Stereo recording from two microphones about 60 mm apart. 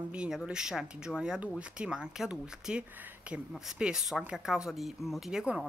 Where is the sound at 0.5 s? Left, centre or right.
Centre.